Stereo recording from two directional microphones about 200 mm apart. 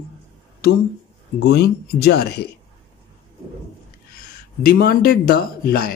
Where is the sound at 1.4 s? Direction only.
55° left (ahead or behind).